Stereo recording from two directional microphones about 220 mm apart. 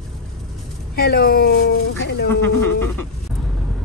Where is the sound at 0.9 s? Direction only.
45° left (ahead or behind).